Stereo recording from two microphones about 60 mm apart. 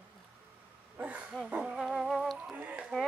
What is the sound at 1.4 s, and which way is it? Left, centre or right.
Speech, right.